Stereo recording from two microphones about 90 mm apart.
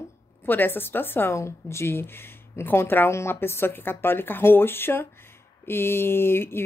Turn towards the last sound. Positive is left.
turn(degrees=25)  # may be behind; listen again after turning